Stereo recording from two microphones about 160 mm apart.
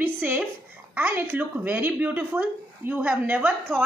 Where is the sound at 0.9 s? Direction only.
15° right (ahead or behind).